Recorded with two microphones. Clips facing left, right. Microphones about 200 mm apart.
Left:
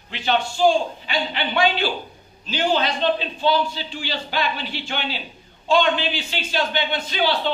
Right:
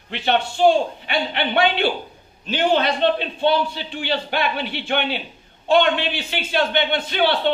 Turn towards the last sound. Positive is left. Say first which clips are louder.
# right 3 dB
turn(degrees=-60)  # may be behind; listen again after turning